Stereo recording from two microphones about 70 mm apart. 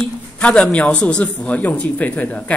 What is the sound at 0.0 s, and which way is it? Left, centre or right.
A man's voice, centre.